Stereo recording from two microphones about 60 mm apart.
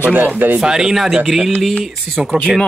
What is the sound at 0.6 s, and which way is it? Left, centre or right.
Speech, centre.